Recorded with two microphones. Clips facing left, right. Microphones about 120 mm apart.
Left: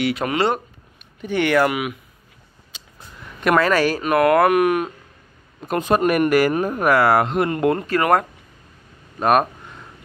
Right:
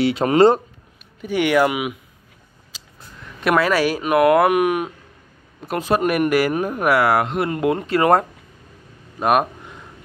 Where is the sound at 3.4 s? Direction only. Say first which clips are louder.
Left 1 dB; 10° right (ahead or behind).